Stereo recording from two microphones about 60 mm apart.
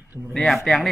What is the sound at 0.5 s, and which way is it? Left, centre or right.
Speech, centre.